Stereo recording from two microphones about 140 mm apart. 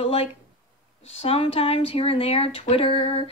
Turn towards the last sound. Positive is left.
turn(degrees=40)  # may be behind; listen again after turning